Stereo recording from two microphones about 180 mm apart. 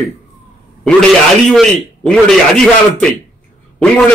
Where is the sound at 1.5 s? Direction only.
5° left (ahead or behind).